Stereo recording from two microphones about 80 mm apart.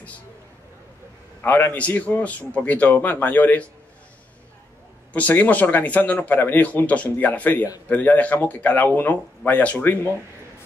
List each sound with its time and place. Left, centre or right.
1.4 s speech: left
5.1 s speech: centre